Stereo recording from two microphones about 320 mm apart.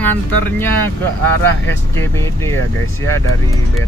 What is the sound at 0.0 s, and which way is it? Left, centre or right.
Speech, centre.